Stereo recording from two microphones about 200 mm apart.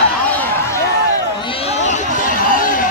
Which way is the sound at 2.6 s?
45° left (ahead or behind).